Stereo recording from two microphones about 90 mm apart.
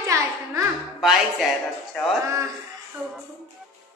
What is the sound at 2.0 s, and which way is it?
Speech, 5° left (ahead or behind).